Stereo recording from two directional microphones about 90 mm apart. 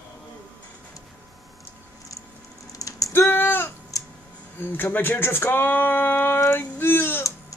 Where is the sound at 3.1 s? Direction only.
25° left (ahead or behind).